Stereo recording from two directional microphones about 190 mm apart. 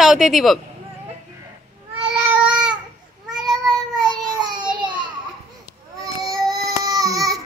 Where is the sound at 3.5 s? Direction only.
20° right (ahead or behind).